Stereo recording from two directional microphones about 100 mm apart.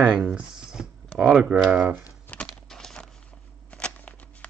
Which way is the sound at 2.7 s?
5° left (ahead or behind).